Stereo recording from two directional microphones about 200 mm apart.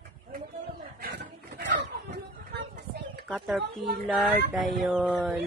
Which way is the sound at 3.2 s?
5° right (ahead or behind).